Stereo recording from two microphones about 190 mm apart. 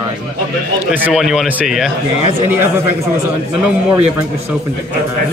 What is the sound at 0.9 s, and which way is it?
A man's voice, 5° right (ahead or behind).